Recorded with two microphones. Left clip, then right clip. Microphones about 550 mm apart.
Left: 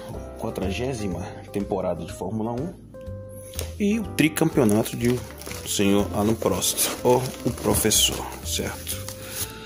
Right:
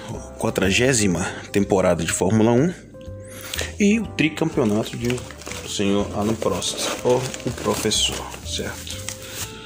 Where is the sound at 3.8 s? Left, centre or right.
Left.